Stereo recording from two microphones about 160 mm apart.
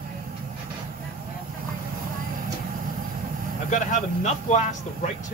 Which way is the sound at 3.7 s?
50° left (ahead or behind).